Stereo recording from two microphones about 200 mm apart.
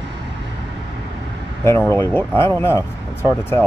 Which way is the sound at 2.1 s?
10° left (ahead or behind).